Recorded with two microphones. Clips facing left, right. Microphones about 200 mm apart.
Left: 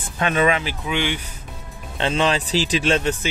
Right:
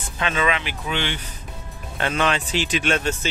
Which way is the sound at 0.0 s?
50° left (ahead or behind).